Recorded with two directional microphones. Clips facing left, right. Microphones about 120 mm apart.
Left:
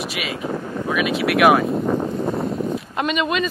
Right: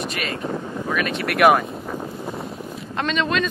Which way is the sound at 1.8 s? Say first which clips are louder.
Left 9 dB; 40° left (ahead or behind).